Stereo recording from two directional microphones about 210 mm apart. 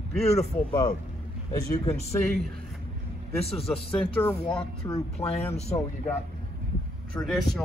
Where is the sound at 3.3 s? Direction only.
30° left (ahead or behind).